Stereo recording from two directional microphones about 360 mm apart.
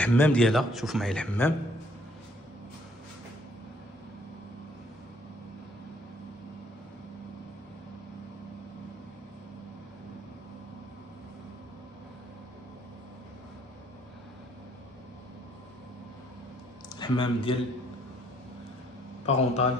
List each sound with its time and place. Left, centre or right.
0.0 s speech: centre
16.9 s speech: centre
19.2 s a man's voice: centre